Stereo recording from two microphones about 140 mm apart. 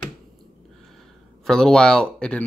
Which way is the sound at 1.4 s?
5° left (ahead or behind).